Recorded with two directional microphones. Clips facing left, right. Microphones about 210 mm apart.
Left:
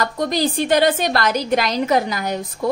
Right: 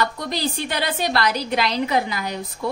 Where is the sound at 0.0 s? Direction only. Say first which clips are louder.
Left 4 dB; 45° left (ahead or behind).